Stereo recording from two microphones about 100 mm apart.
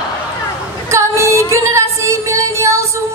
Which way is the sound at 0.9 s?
30° right (ahead or behind).